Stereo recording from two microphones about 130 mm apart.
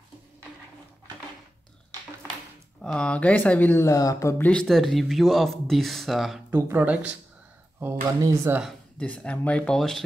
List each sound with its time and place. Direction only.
2.8 s speech: 5° left (ahead or behind)
3.8 s speech: 25° left (ahead or behind)
4.5 s speech: 5° left (ahead or behind)
6.5 s speech: 15° right (ahead or behind)
8.9 s speech: 10° left (ahead or behind)